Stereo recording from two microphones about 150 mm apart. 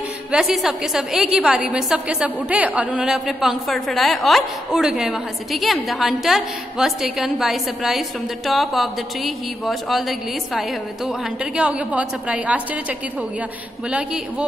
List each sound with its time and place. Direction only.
0.3 s a woman's voice: 5° right (ahead or behind)
13.8 s a man's voice: 5° right (ahead or behind)